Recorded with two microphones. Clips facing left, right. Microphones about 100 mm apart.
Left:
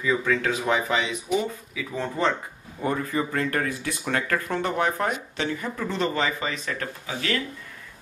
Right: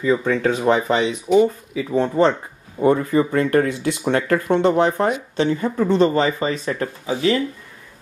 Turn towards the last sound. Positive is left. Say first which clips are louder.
# right 9 dB
turn(degrees=-25)  # may be behind; listen again after turning